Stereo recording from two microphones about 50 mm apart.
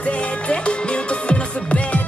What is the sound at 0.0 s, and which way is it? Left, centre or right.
Music, left.